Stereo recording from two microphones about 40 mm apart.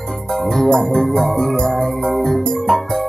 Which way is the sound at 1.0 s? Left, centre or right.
Centre.